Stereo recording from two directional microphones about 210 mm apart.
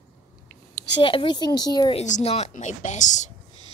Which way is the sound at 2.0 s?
35° left (ahead or behind).